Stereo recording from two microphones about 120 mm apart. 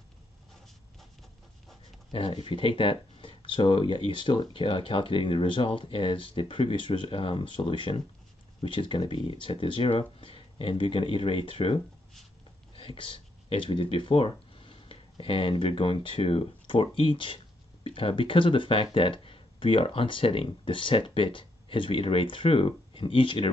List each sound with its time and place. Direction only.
2.1 s speech: 50° left (ahead or behind)